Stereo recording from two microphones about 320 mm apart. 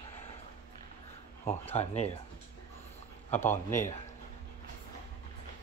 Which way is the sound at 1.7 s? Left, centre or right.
Centre.